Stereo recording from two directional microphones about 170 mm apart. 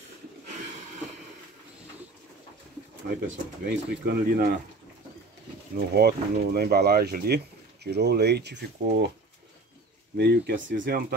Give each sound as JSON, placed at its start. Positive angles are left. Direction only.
{"t": 3.1, "sound": "speech", "side_deg": -75}
{"t": 5.8, "sound": "speech", "side_deg": -70}
{"t": 10.1, "sound": "speech", "side_deg": -70}